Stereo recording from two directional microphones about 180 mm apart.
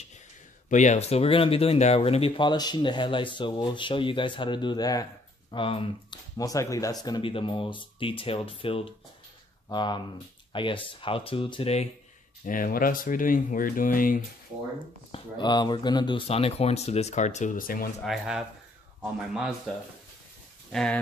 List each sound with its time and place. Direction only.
0.7 s speech: 40° left (ahead or behind)
12.4 s speech: 50° left (ahead or behind)
15.0 s speech: 30° left (ahead or behind); by 17.9 s 50° left (ahead or behind)
18.0 s speech: centre (ahead or behind)
20.7 s speech: 5° left (ahead or behind)